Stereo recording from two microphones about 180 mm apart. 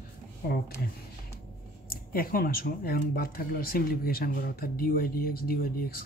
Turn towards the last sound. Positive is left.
turn(degrees=55)  # may be behind; listen again after turning